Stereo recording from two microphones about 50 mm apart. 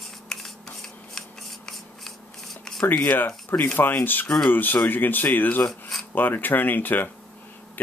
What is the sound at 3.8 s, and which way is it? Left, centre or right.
Speech, left.